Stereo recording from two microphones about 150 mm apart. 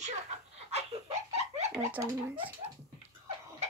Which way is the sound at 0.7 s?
45° right (ahead or behind).